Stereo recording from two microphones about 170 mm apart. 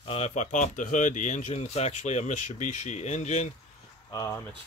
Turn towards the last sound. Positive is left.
turn(degrees=20)  # may be behind; listen again after turning